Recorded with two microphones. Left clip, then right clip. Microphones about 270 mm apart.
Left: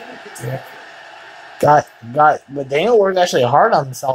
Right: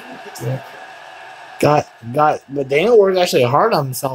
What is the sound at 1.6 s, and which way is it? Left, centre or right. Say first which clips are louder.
Speech: left 3 dB; centre.